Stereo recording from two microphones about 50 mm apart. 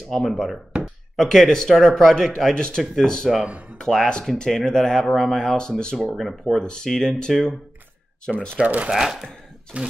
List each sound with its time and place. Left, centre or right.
0.1 s speech: centre
5.9 s speech: centre
6.6 s speech: centre
8.6 s speech: right
8.9 s speech: centre
9.7 s speech: right